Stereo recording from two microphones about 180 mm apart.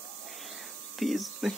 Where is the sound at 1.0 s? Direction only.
Centre (ahead or behind).